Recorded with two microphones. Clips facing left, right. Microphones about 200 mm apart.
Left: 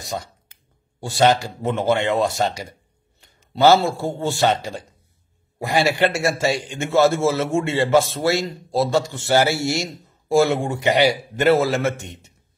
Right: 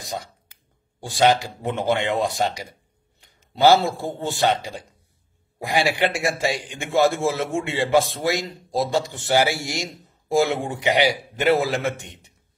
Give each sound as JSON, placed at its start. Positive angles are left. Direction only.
{"t": 1.0, "sound": "a man's voice", "side_deg": -15}
{"t": 4.2, "sound": "a man's voice", "side_deg": -20}